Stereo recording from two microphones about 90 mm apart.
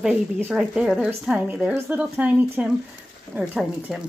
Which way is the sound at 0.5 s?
10° right (ahead or behind).